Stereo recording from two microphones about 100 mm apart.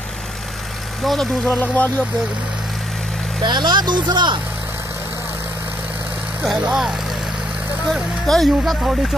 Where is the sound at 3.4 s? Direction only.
45° right (ahead or behind).